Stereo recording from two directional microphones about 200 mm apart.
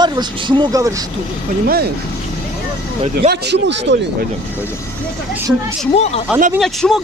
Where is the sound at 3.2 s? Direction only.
60° right (ahead or behind).